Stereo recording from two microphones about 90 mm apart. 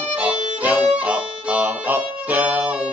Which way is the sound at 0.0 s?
15° right (ahead or behind).